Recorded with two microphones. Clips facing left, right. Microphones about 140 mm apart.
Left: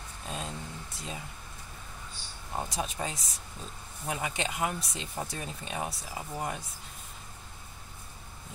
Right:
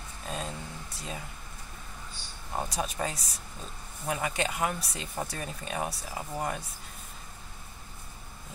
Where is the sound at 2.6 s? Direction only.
20° left (ahead or behind).